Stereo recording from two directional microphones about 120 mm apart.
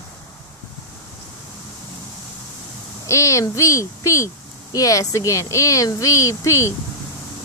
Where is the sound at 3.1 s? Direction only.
25° left (ahead or behind).